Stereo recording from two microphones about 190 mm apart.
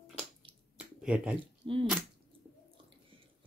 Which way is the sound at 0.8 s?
5° right (ahead or behind).